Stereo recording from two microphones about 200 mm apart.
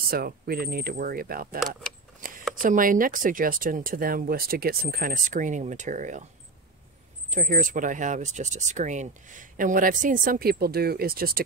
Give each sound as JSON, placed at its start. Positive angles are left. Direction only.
{"t": 0.1, "sound": "speech", "side_deg": -50}
{"t": 2.1, "sound": "a sound", "side_deg": -45}
{"t": 2.5, "sound": "speech", "side_deg": -45}
{"t": 7.3, "sound": "speech", "side_deg": -40}